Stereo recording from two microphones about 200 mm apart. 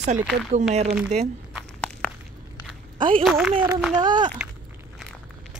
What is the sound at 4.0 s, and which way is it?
Speech, 20° right (ahead or behind).